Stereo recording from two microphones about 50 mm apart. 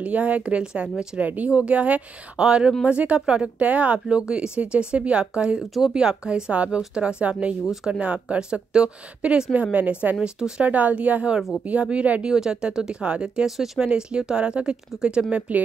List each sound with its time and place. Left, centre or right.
0.0 s speech: right
7.7 s speech: centre
8.0 s speech: right
12.3 s speech: centre